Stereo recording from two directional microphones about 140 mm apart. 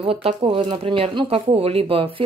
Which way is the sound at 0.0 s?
40° right (ahead or behind).